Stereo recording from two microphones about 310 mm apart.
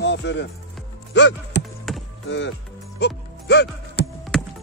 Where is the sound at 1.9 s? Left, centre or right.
Centre.